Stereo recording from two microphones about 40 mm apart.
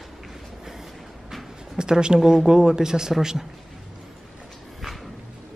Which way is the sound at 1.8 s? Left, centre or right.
Right.